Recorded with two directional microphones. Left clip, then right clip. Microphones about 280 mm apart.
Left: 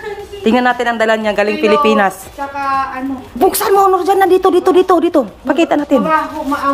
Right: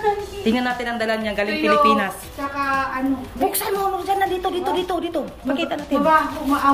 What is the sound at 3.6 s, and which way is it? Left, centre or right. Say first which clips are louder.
A man's voice: left 12 dB; centre.